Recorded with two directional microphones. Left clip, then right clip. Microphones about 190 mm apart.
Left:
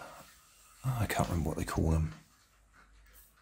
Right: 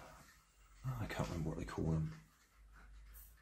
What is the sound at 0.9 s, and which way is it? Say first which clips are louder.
Speech: left 10 dB; 50° left (ahead or behind).